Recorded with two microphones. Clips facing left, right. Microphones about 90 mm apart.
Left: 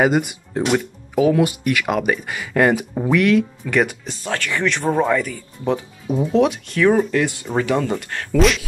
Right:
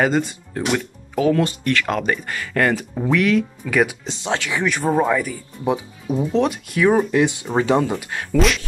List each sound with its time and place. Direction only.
0.0 s speech: 10° left (ahead or behind)
4.0 s speech: 25° right (ahead or behind)
6.1 s speech: centre (ahead or behind); by 7.8 s 25° right (ahead or behind)
7.8 s speech: 10° right (ahead or behind)